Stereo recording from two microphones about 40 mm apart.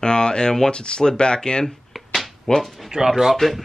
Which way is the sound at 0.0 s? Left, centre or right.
Left.